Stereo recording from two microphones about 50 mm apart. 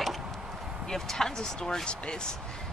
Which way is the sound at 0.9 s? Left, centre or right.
Centre.